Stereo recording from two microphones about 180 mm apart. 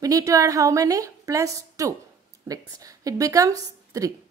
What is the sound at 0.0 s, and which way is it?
A woman's voice, 20° right (ahead or behind).